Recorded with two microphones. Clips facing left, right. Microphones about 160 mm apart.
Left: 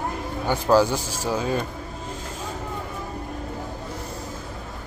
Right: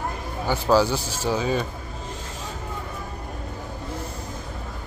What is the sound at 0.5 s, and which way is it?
Speech, 10° right (ahead or behind).